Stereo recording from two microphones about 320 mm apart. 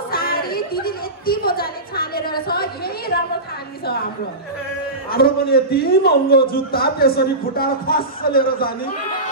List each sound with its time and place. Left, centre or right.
0.1 s chatter: left
5.1 s a man's voice: left